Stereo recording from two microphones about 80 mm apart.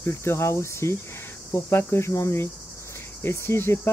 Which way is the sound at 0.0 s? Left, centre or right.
Left.